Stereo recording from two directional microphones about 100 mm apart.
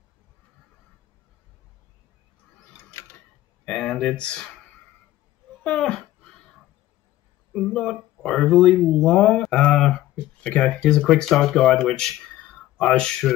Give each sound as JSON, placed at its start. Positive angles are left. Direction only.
{"t": 2.9, "sound": "a sound", "side_deg": 25}
{"t": 3.6, "sound": "speech", "side_deg": 5}
{"t": 5.6, "sound": "speech", "side_deg": 5}
{"t": 7.5, "sound": "speech", "side_deg": 5}